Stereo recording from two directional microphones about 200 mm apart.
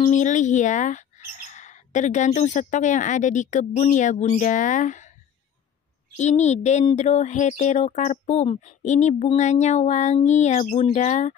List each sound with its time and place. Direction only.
0.0 s speech: 40° left (ahead or behind)
6.1 s speech: 35° left (ahead or behind)